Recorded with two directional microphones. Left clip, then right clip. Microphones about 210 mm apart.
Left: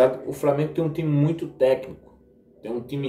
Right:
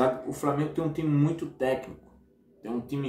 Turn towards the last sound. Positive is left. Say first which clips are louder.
# left 4 dB
turn(degrees=-15)  # may be behind; listen again after turning